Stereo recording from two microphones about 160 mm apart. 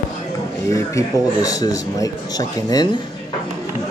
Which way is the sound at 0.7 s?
20° left (ahead or behind).